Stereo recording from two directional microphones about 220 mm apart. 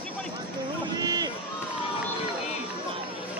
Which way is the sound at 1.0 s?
15° right (ahead or behind).